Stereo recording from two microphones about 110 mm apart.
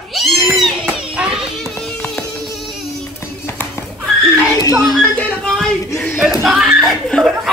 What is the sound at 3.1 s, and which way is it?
Music, 20° left (ahead or behind).